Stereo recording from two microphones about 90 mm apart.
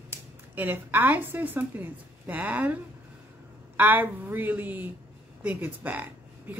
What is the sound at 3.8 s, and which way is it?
A woman's voice, 20° right (ahead or behind).